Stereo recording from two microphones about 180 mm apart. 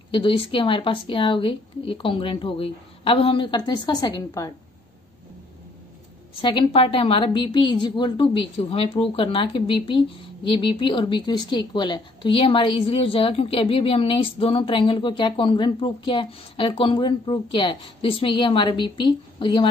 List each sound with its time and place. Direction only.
0.1 s a woman's voice: 30° left (ahead or behind)
6.3 s a woman's voice: 30° left (ahead or behind)